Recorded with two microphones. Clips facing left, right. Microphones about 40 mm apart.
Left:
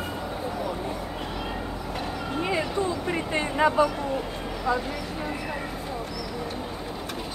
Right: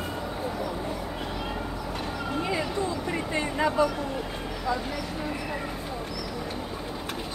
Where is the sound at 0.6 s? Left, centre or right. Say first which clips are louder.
Left 1 dB; centre.